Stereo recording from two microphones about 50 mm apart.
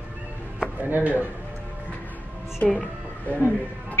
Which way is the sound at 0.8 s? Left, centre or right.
Right.